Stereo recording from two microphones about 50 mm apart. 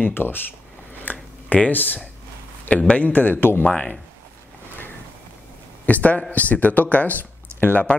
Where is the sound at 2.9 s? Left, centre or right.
Left.